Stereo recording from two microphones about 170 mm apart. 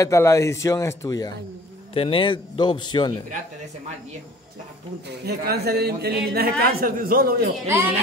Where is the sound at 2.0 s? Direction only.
30° left (ahead or behind).